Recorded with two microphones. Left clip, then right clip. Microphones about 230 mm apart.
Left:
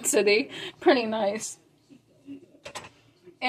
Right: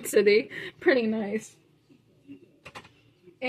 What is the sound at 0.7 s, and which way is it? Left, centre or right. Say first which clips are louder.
Speech: left 2 dB; left.